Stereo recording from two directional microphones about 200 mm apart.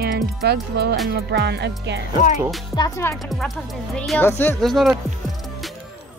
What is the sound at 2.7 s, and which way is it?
Music, 15° left (ahead or behind).